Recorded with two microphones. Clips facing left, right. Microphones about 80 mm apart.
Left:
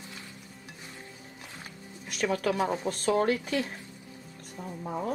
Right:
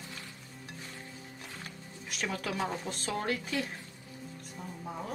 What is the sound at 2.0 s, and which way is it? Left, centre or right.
Speech, left.